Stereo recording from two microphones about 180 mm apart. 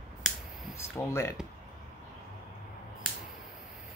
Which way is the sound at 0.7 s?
15° left (ahead or behind).